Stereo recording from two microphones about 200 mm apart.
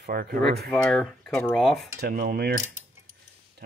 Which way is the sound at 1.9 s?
50° right (ahead or behind).